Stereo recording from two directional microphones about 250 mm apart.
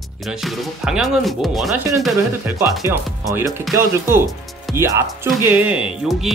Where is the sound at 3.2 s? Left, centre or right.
Centre.